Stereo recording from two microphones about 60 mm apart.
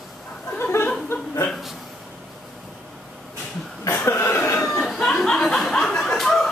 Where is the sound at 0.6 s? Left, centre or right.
Left.